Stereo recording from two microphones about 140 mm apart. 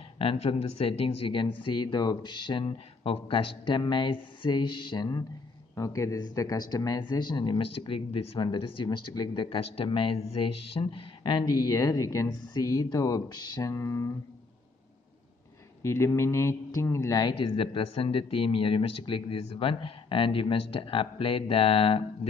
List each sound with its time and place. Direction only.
0.2 s a man's voice: 40° left (ahead or behind); by 14.1 s 20° left (ahead or behind)
15.8 s a man's voice: 20° left (ahead or behind); by 22.3 s 45° left (ahead or behind)